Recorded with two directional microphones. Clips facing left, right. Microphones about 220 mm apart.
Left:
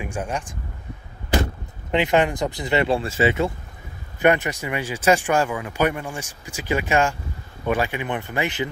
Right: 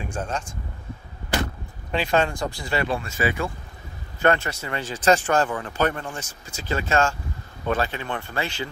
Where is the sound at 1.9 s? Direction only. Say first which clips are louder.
Left 3 dB; 20° left (ahead or behind).